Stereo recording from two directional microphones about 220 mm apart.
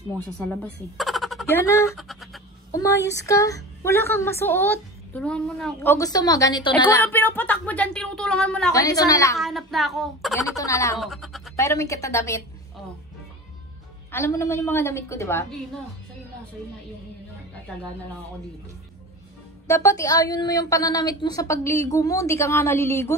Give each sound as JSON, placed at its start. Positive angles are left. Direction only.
{"t": 0.4, "sound": "speech", "side_deg": 5}
{"t": 1.4, "sound": "a woman's voice", "side_deg": 10}
{"t": 2.0, "sound": "speech", "side_deg": 0}
{"t": 2.7, "sound": "a woman's voice", "side_deg": 15}
{"t": 8.7, "sound": "a woman's voice", "side_deg": 15}
{"t": 9.4, "sound": "speech", "side_deg": 0}
{"t": 10.5, "sound": "a woman's voice", "side_deg": 15}
{"t": 11.0, "sound": "a sound", "side_deg": 0}
{"t": 11.5, "sound": "a woman's voice", "side_deg": 15}
{"t": 14.1, "sound": "a woman's voice", "side_deg": 10}
{"t": 19.7, "sound": "a woman's voice", "side_deg": 15}